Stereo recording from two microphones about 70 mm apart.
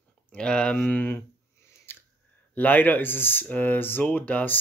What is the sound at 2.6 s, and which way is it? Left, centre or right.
Speech, left.